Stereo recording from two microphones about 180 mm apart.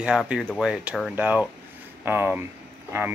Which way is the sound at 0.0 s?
5° right (ahead or behind).